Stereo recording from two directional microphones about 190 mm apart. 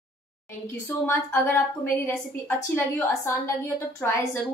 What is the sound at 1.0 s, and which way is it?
A woman's voice, 15° left (ahead or behind).